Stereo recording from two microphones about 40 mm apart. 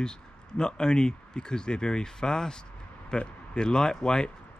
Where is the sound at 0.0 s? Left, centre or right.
Centre.